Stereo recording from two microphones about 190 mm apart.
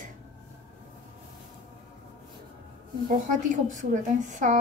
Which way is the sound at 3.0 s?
45° right (ahead or behind).